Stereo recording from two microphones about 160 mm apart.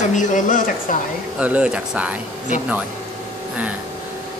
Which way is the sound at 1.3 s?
10° right (ahead or behind).